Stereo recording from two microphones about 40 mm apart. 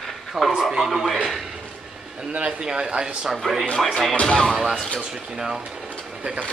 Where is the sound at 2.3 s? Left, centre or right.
Right.